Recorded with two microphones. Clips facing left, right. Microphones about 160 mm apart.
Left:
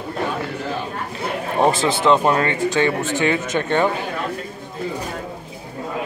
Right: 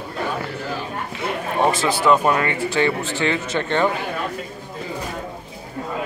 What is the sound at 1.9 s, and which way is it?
Speech, 25° left (ahead or behind).